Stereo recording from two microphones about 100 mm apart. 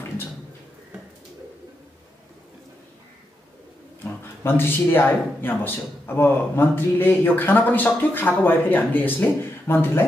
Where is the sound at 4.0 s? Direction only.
20° left (ahead or behind).